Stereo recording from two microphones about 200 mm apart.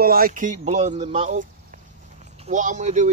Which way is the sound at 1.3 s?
40° right (ahead or behind).